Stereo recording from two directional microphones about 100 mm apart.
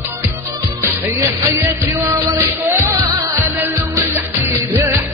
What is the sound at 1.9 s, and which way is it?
Music, 25° right (ahead or behind).